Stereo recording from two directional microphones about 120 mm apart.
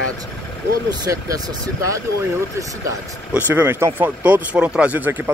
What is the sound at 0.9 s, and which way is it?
Speech, 30° right (ahead or behind).